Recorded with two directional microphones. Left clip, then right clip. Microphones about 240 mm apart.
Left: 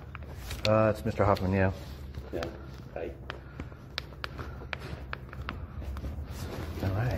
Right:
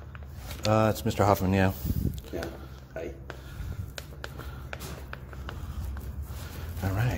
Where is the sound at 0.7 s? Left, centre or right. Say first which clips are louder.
Even; right.